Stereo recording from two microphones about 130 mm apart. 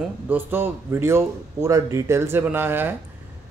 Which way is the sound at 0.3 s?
15° right (ahead or behind).